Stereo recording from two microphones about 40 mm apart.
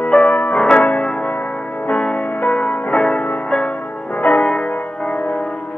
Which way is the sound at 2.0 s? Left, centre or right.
Left.